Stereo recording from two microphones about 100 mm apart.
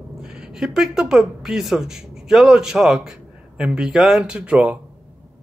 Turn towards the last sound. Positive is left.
turn(degrees=-10)  # may be behind; listen again after turning